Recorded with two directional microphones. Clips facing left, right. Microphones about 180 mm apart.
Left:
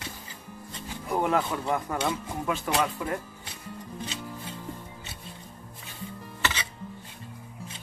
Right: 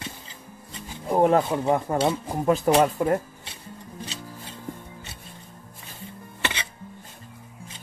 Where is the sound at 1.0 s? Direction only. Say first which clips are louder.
Right 7 dB; 30° right (ahead or behind).